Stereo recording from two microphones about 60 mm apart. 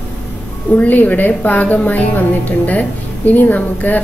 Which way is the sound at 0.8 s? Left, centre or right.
Left.